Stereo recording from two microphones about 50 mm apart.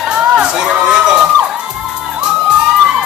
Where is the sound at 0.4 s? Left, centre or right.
Centre.